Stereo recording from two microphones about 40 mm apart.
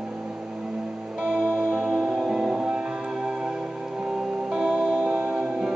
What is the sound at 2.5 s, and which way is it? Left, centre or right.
Music, centre.